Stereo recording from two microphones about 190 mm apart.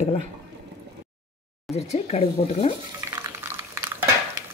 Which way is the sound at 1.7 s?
35° left (ahead or behind).